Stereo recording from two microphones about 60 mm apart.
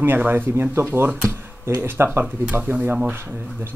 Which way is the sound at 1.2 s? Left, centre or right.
Right.